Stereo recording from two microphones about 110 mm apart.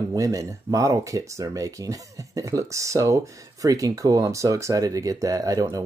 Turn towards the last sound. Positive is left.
turn(degrees=-35)  # may be behind; listen again after turning